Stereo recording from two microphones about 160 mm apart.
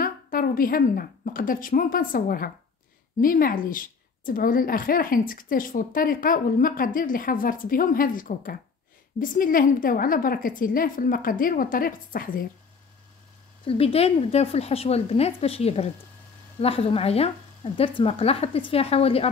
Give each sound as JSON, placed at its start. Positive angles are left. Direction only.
{"t": 0.0, "sound": "a woman's voice", "side_deg": 60}
{"t": 13.7, "sound": "a woman's voice", "side_deg": 35}